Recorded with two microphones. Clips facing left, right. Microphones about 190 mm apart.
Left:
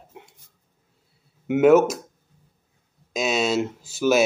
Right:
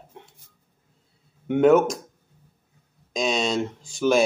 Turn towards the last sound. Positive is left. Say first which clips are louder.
# left 1 dB
turn(degrees=5)  # may be behind; listen again after turning